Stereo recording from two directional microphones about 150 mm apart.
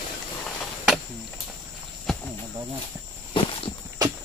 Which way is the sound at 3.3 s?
35° left (ahead or behind).